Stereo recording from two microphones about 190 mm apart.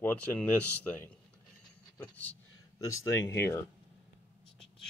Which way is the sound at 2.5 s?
90° left.